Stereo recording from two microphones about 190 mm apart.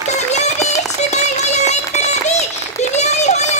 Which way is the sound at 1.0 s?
35° left (ahead or behind).